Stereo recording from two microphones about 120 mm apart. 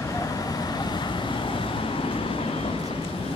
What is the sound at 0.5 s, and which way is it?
Vehicle, 35° left (ahead or behind).